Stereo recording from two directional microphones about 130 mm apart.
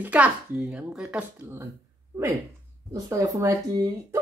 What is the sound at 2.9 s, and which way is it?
Speech, 25° right (ahead or behind).